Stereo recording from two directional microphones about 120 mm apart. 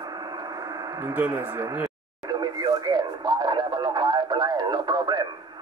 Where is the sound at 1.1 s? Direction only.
15° right (ahead or behind).